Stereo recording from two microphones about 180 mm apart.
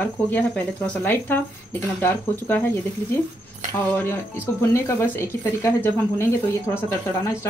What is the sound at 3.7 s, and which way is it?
Speech, 10° left (ahead or behind).